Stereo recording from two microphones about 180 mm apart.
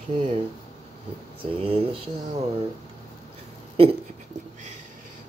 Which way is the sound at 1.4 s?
30° right (ahead or behind).